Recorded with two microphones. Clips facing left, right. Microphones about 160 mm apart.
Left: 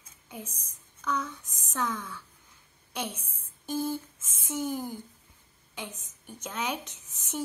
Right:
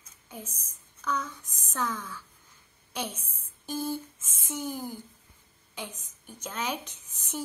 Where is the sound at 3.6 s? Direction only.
20° left (ahead or behind).